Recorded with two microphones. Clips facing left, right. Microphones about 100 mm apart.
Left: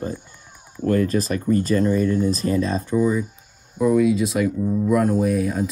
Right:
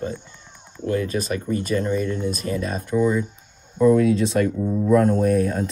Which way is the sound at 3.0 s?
10° left (ahead or behind).